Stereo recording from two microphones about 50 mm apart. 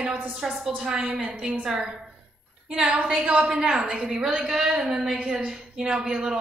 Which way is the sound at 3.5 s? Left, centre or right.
Centre.